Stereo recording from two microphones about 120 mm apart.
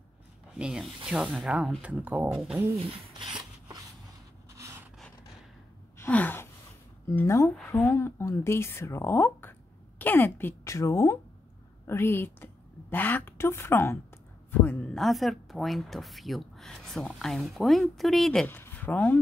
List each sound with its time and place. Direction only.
0.6 s speech: 5° right (ahead or behind)
2.8 s rub: 45° right (ahead or behind)
5.9 s gasp: 15° left (ahead or behind)
7.1 s speech: 25° left (ahead or behind); by 18.5 s centre (ahead or behind)
18.5 s speech: 15° left (ahead or behind)